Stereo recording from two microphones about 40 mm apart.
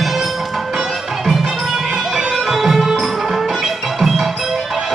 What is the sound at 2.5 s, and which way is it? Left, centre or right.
Music, centre.